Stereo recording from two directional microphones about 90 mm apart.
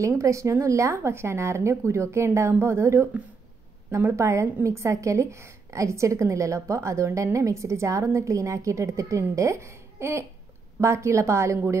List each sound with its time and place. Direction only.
0.2 s a woman's voice: 35° right (ahead or behind)